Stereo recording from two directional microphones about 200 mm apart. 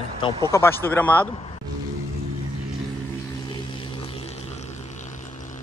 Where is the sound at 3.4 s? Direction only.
25° left (ahead or behind).